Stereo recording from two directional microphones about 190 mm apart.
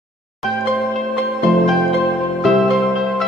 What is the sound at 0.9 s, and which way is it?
Music, centre (ahead or behind).